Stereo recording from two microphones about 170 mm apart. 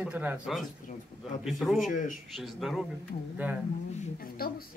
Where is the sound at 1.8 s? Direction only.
50° left (ahead or behind).